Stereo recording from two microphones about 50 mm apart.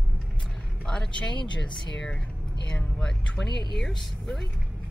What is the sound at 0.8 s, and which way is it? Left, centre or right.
Speech, centre.